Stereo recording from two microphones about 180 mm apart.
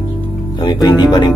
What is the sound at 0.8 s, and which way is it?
Speech, 25° left (ahead or behind).